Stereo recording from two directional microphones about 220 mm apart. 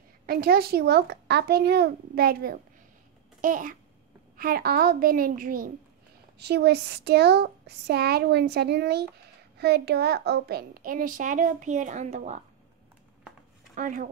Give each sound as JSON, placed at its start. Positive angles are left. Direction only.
{"t": 0.3, "sound": "a child's voice", "side_deg": -45}
{"t": 13.7, "sound": "a child's voice", "side_deg": -35}